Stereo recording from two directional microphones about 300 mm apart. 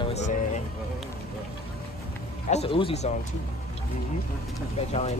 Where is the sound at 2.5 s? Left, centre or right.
Centre.